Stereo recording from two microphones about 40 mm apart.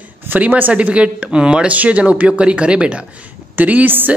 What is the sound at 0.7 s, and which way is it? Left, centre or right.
A woman's voice, right.